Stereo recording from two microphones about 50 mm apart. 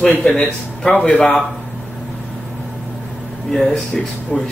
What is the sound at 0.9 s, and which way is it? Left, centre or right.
Speech, left.